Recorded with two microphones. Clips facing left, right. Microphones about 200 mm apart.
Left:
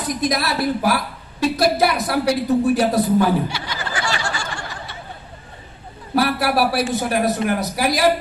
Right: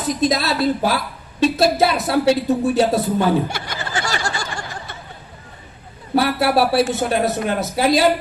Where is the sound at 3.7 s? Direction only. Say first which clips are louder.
Even; 50° right (ahead or behind).